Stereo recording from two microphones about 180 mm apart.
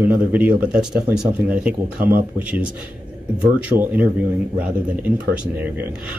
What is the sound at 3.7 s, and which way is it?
Speech, 40° right (ahead or behind).